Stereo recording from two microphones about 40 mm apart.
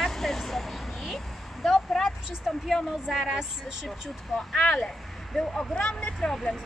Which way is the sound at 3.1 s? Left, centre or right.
Centre.